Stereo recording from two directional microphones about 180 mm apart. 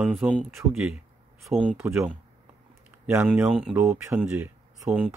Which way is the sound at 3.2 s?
5° right (ahead or behind).